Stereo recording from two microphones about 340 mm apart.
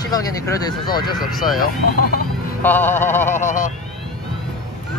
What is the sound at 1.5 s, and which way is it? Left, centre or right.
Speech, left.